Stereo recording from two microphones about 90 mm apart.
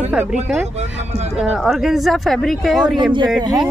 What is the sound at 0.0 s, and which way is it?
Speech, 15° right (ahead or behind).